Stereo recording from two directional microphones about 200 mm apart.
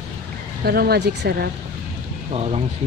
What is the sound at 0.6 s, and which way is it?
Speech, 50° right (ahead or behind).